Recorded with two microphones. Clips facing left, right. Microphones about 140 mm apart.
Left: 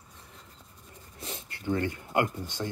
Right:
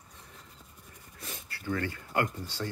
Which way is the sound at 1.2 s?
25° left (ahead or behind).